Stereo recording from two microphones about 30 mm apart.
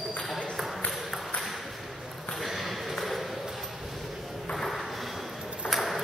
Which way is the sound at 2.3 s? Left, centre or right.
Centre.